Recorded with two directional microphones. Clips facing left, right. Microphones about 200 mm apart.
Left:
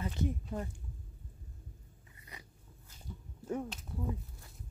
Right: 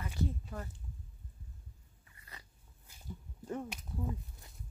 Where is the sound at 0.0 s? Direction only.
20° left (ahead or behind).